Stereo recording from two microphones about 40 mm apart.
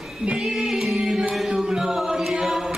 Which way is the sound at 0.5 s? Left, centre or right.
Centre.